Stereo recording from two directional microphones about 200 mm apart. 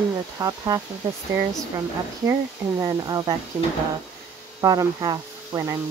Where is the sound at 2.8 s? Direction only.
15° right (ahead or behind).